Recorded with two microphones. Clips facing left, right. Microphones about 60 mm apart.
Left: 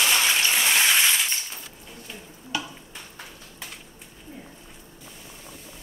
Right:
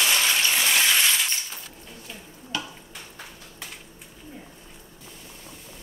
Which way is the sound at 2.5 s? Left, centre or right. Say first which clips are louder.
Left 1 dB; centre.